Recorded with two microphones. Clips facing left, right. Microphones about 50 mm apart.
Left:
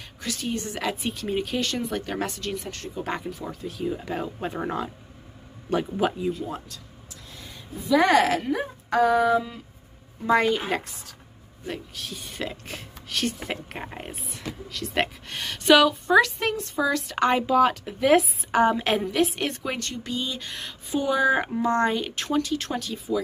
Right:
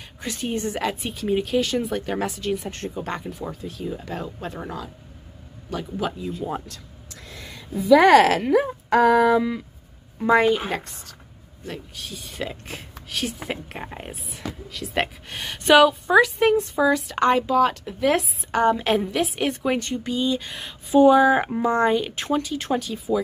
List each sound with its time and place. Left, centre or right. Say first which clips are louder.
0.2 s a woman's voice: right 3 dB; right
0.7 s speech: right 2 dB; centre
3.0 s speech: left 2 dB; centre
5.9 s speech: even; centre
7.1 s speech: right 4 dB; right
10.2 s speech: right 3 dB; centre
10.7 s speech: left 1 dB; centre
17.0 s speech: right 3 dB; centre